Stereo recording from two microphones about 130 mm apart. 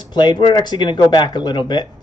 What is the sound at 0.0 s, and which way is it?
Speech, 35° left (ahead or behind).